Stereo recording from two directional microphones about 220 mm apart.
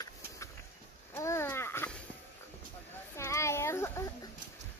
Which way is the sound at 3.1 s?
10° left (ahead or behind).